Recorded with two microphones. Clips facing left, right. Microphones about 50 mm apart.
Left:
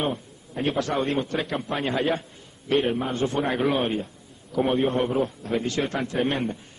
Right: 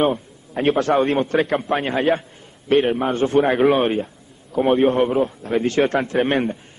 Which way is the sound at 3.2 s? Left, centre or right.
Right.